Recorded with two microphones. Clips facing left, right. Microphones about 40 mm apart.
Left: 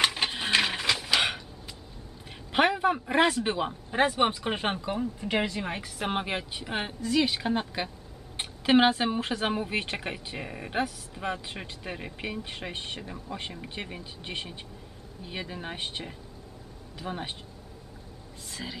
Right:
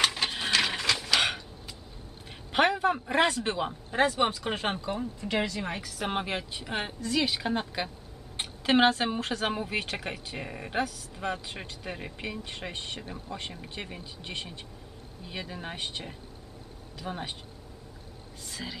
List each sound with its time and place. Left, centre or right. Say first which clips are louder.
0.0 s printer: left 1 dB; centre
0.6 s a sound: left 1 dB; centre
2.5 s a woman's voice: left 1 dB; centre
18.5 s speech: even; centre